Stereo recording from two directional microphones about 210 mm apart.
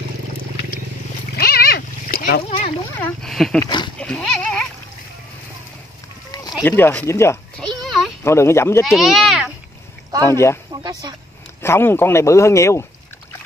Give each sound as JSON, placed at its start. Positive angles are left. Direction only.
{"t": 1.3, "sound": "splash", "side_deg": 45}
{"t": 3.0, "sound": "speech", "side_deg": 0}
{"t": 3.6, "sound": "speech", "side_deg": 20}
{"t": 4.0, "sound": "dog", "side_deg": 5}
{"t": 6.6, "sound": "a sound", "side_deg": 10}
{"t": 8.2, "sound": "speech", "side_deg": 10}
{"t": 8.8, "sound": "speech", "side_deg": 0}
{"t": 10.3, "sound": "speech", "side_deg": 10}
{"t": 10.7, "sound": "speech", "side_deg": -20}
{"t": 11.6, "sound": "speech", "side_deg": 10}